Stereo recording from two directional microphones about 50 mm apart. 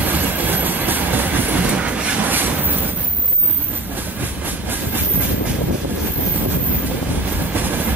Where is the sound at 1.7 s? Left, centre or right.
Right.